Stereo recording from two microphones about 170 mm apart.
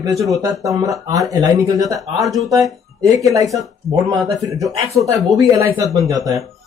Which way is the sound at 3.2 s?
20° right (ahead or behind).